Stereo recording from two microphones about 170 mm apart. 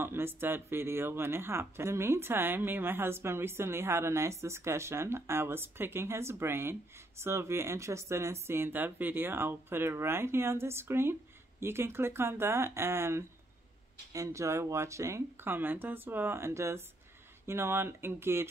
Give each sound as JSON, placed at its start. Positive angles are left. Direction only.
{"t": 0.0, "sound": "speech", "side_deg": -15}